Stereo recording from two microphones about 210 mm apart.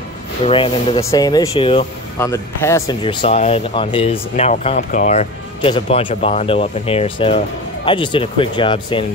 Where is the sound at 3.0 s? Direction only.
25° left (ahead or behind).